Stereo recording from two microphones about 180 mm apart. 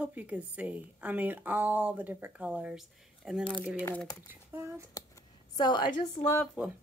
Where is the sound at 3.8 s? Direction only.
10° left (ahead or behind).